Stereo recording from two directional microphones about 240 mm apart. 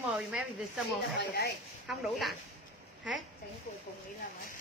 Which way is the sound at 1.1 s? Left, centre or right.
Left.